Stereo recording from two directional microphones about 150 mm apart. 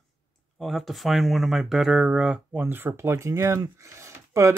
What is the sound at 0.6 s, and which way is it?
Speech, centre (ahead or behind).